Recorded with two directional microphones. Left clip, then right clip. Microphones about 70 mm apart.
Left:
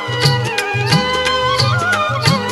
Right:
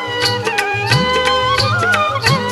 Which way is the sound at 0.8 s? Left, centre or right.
Left.